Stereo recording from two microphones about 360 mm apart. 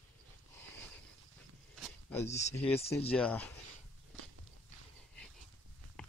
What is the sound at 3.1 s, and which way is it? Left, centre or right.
Speech, centre.